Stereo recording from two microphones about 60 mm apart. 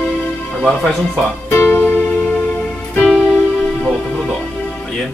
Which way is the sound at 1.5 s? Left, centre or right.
Left.